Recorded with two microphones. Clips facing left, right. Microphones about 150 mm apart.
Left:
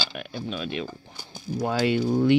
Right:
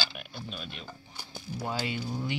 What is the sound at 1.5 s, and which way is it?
Speech, 90° left.